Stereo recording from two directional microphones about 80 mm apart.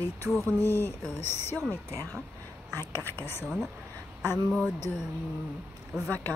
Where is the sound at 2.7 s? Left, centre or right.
Left.